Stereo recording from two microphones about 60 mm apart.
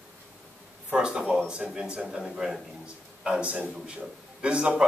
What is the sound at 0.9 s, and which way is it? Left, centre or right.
A man's voice, centre.